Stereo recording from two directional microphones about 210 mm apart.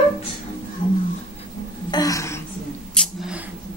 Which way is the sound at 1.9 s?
15° left (ahead or behind).